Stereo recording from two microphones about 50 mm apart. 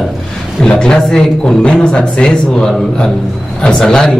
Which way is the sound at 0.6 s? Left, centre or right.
Centre.